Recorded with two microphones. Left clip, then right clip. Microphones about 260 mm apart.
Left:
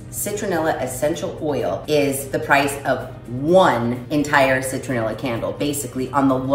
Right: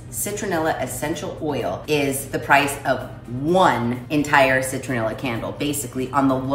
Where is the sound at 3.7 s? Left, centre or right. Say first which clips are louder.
Left 1 dB; centre.